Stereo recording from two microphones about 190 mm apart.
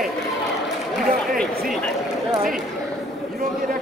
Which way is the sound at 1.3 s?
Centre (ahead or behind).